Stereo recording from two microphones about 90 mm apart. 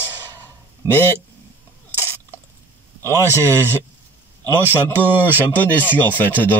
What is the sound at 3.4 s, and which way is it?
Speech, 30° right (ahead or behind).